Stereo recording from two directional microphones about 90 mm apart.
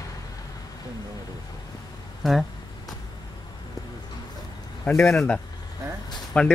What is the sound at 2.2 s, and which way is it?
Speech, centre (ahead or behind).